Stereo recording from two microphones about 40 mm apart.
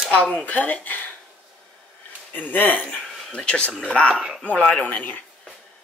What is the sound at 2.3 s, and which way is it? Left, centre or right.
Speech, left.